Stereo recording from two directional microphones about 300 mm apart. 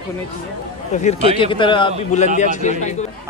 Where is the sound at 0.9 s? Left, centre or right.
Left.